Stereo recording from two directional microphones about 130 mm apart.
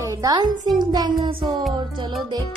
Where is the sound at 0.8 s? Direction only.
35° right (ahead or behind).